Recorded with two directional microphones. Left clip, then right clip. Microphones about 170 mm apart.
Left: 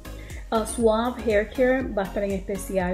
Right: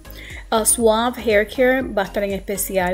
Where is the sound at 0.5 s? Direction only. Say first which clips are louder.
Right 5 dB; 15° right (ahead or behind).